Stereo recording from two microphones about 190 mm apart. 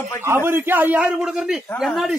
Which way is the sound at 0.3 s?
10° right (ahead or behind).